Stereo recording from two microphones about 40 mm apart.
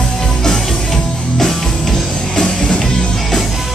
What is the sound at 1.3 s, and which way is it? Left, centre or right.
Music, centre.